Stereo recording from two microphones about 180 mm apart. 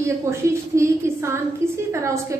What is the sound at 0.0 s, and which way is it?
A woman's voice, 15° right (ahead or behind).